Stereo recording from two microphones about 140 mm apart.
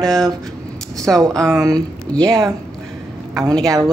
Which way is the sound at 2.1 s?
5° left (ahead or behind).